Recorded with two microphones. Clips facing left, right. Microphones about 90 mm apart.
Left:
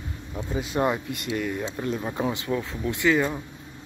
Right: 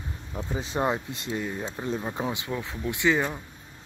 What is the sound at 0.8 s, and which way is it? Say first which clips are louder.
Speech: left 2 dB; 25° right (ahead or behind).